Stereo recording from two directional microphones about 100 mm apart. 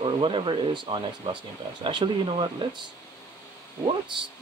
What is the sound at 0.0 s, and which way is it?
Speech, 55° right (ahead or behind).